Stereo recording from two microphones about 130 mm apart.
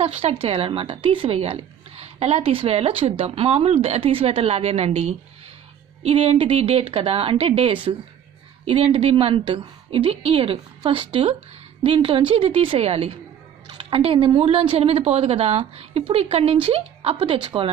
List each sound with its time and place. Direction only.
0.0 s a woman's voice: 50° right (ahead or behind)